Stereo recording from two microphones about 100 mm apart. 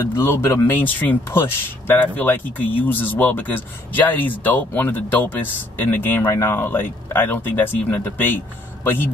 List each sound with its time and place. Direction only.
0.1 s speech: 25° left (ahead or behind)